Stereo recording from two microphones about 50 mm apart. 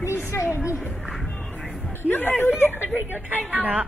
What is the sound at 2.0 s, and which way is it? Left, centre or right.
Speech, left.